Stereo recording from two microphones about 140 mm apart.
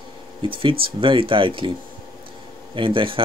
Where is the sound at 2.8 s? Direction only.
40° right (ahead or behind).